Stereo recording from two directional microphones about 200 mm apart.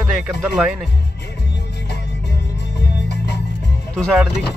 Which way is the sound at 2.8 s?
60° left (ahead or behind).